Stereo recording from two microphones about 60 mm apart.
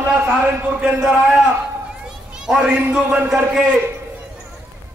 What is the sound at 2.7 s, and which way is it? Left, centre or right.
Speech, right.